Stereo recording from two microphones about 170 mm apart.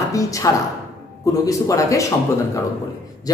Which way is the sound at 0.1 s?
20° left (ahead or behind).